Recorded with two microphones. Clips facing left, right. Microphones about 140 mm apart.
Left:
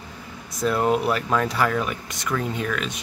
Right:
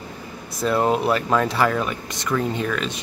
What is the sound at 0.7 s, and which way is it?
Speech, centre (ahead or behind).